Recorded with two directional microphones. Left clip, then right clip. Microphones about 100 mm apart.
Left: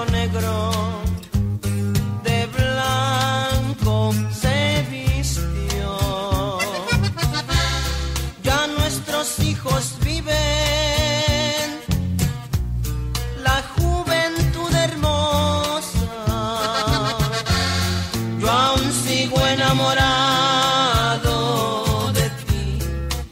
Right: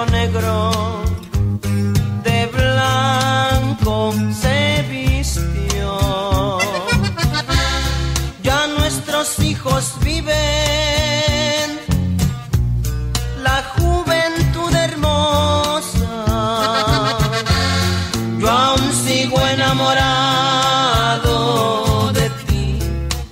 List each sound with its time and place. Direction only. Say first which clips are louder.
0.0 s music: right 5 dB; 20° left (ahead or behind)
1.9 s music: right 3 dB; 20° left (ahead or behind)
13.4 s music: right 3 dB; 20° left (ahead or behind)